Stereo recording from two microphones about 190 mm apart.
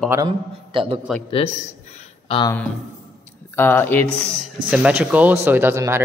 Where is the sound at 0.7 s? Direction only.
30° right (ahead or behind).